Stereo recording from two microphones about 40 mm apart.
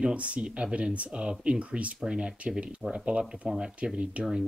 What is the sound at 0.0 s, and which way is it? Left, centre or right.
Speech, right.